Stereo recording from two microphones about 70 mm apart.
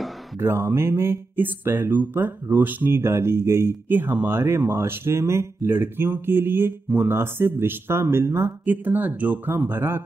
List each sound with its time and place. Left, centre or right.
0.4 s speech: right
8.6 s speech: right